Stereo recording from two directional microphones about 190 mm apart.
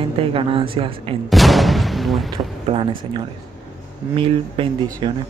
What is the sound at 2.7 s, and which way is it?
Speech, 35° right (ahead or behind).